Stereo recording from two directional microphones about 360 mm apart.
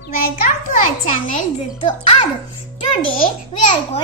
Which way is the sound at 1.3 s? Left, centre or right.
Centre.